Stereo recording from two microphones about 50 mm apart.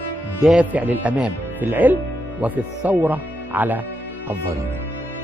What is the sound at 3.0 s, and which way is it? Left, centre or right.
Music, right.